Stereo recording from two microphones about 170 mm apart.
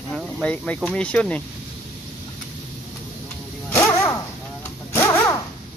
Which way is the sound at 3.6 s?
15° left (ahead or behind).